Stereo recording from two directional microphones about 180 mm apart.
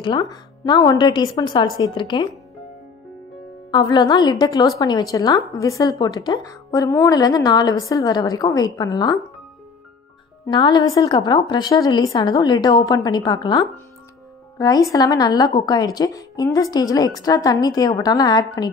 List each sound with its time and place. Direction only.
0.0 s speech: 25° left (ahead or behind)
3.7 s speech: 25° left (ahead or behind)
10.4 s speech: 25° left (ahead or behind)